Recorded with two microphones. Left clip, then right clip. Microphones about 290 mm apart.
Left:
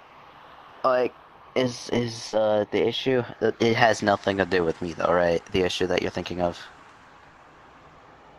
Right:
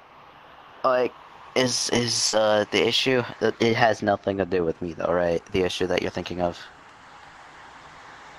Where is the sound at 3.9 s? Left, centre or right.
Centre.